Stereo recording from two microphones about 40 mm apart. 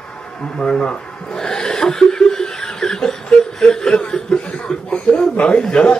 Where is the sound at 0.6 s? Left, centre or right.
Centre.